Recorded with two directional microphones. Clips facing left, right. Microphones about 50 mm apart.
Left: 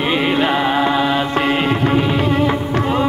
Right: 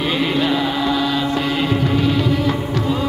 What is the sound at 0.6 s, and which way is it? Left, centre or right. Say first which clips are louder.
Music: left 3 dB; left.